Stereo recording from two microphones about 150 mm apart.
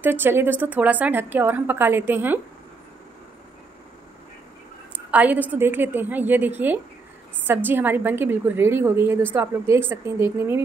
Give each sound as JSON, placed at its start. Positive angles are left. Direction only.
{"t": 0.0, "sound": "a woman's voice", "side_deg": -15}
{"t": 4.9, "sound": "a woman's voice", "side_deg": -10}